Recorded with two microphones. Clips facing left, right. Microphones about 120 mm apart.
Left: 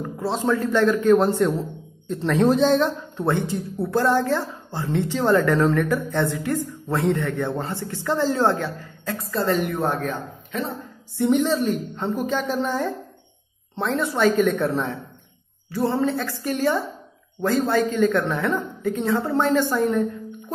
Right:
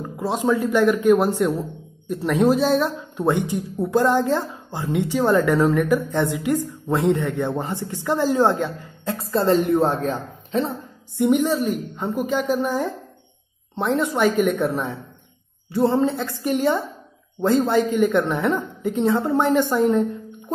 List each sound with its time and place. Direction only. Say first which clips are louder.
0.0 s speech: right 1 dB; 15° right (ahead or behind); by 10.7 s 30° right (ahead or behind)
11.1 s a woman's voice: right 1 dB; 15° right (ahead or behind)